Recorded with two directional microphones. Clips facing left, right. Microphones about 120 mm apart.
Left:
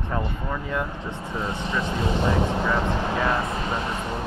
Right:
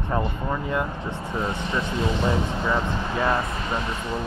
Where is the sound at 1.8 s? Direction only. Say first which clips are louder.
Even; 45° left (ahead or behind).